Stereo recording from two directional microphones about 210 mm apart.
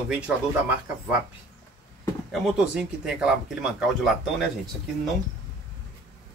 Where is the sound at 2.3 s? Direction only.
Centre (ahead or behind).